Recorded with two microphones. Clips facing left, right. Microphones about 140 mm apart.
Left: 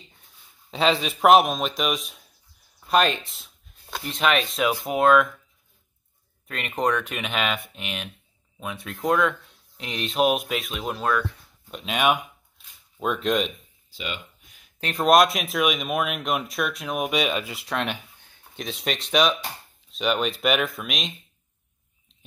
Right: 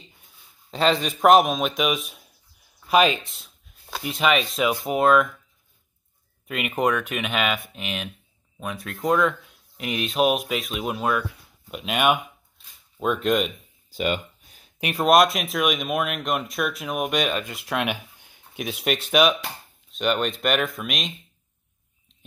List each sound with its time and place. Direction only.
0.7 s speech: centre (ahead or behind)
6.4 s speech: 5° right (ahead or behind)
13.8 s speech: 50° right (ahead or behind)
14.4 s a sound: 35° right (ahead or behind)
14.8 s speech: 10° right (ahead or behind)
15.0 s speech: centre (ahead or behind)